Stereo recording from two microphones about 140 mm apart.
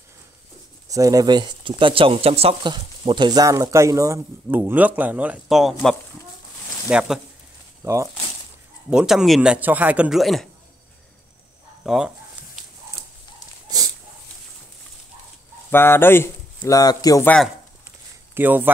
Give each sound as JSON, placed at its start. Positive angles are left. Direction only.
{"t": 0.8, "sound": "speech", "side_deg": -25}
{"t": 7.8, "sound": "speech", "side_deg": -20}
{"t": 8.9, "sound": "a man's voice", "side_deg": -5}
{"t": 11.8, "sound": "speech", "side_deg": -5}
{"t": 13.7, "sound": "dog", "side_deg": -30}
{"t": 15.7, "sound": "speech", "side_deg": 15}
{"t": 18.3, "sound": "speech", "side_deg": -15}